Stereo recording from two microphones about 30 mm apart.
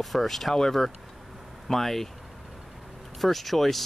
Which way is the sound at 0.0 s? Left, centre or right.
Centre.